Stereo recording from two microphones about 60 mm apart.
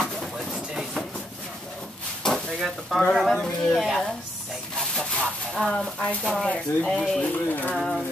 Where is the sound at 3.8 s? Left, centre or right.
Centre.